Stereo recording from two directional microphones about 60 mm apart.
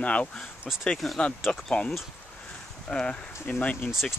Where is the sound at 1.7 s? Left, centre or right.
Left.